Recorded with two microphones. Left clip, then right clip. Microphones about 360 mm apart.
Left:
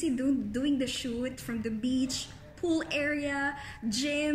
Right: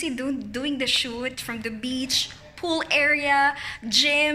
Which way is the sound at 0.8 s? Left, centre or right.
Centre.